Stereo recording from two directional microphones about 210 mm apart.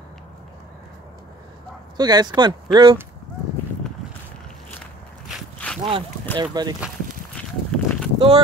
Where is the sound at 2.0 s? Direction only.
20° right (ahead or behind).